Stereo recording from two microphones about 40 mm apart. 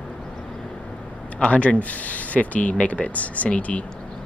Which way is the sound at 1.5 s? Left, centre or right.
Left.